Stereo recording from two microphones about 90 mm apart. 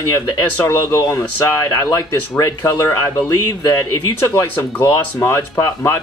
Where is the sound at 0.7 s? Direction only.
30° left (ahead or behind).